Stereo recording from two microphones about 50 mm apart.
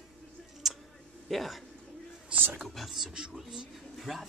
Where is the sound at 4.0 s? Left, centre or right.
Centre.